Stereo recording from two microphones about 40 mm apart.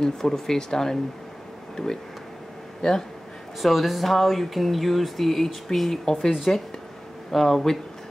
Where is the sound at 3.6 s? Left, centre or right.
Centre.